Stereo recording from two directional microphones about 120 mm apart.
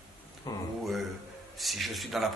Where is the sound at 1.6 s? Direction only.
Centre (ahead or behind).